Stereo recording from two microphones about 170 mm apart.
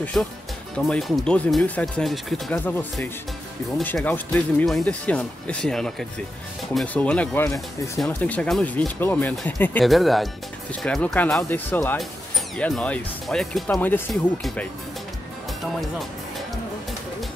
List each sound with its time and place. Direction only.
0.0 s speech: 5° left (ahead or behind)